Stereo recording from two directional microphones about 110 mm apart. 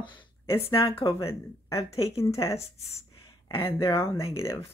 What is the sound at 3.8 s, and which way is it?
Speech, 30° left (ahead or behind).